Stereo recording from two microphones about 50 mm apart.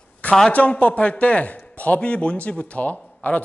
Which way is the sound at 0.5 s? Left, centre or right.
Left.